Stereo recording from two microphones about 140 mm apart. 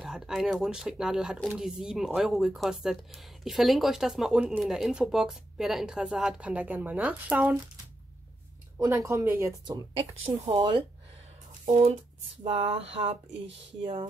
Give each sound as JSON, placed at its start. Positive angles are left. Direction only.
{"t": 0.0, "sound": "speech", "side_deg": 0}
{"t": 8.7, "sound": "speech", "side_deg": -20}
{"t": 9.7, "sound": "speech", "side_deg": -30}
{"t": 12.4, "sound": "a sound", "side_deg": -40}